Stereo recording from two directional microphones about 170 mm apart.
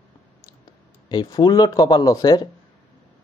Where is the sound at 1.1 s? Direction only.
25° left (ahead or behind).